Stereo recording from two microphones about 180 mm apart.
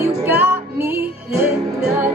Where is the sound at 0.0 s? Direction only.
10° right (ahead or behind).